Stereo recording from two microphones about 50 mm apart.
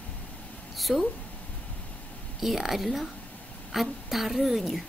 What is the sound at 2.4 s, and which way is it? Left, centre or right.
A woman's voice, centre.